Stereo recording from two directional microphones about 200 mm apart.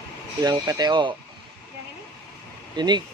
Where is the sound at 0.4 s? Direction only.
20° right (ahead or behind).